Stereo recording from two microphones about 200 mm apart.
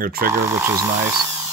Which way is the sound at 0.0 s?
45° right (ahead or behind).